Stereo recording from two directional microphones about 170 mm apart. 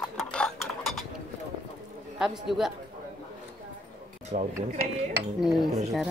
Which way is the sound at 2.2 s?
Centre (ahead or behind).